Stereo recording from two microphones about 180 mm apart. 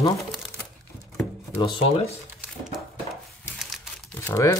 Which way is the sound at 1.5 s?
30° left (ahead or behind).